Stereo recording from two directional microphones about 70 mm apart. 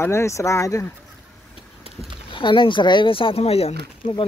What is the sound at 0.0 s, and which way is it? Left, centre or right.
Speech, left.